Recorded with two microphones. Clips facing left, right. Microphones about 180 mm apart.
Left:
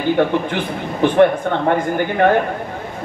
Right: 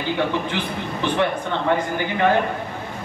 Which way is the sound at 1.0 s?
50° left (ahead or behind).